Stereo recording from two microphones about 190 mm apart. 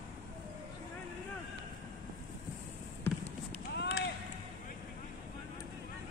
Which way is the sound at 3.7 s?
60° left (ahead or behind).